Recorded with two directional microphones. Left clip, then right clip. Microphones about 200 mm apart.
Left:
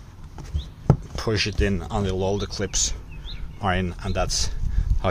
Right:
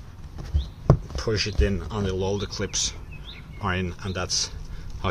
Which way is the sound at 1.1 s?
40° left (ahead or behind).